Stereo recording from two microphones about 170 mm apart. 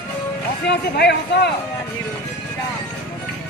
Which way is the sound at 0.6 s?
75° left (ahead or behind).